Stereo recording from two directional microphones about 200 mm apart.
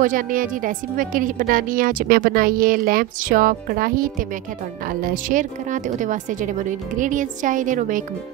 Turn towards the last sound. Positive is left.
turn(degrees=-40)  # may be behind; listen again after turning